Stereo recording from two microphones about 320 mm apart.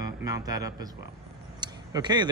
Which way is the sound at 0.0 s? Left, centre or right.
Centre.